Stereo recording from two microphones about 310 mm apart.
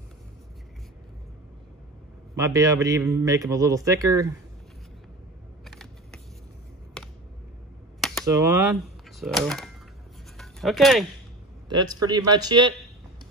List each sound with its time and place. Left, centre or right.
2.3 s a man's voice: centre
5.7 s a sound: centre
8.3 s a man's voice: centre
9.2 s speech: centre
10.3 s a sound: centre
11.7 s a man's voice: centre